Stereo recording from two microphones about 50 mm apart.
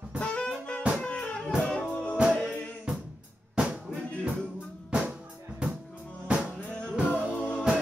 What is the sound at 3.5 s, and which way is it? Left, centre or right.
Music, centre.